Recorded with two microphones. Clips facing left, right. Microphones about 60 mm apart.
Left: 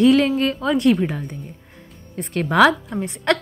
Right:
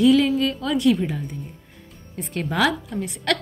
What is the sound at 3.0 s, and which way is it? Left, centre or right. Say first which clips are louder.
Speech: left 4 dB; left.